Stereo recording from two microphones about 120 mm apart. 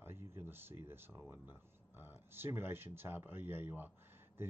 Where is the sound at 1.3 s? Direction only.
15° right (ahead or behind).